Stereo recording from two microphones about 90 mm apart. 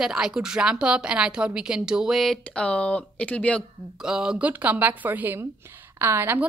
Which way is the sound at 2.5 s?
15° left (ahead or behind).